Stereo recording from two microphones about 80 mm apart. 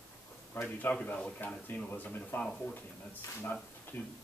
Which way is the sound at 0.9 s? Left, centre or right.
Centre.